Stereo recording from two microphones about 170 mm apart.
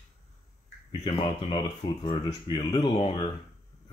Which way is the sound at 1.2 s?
30° left (ahead or behind).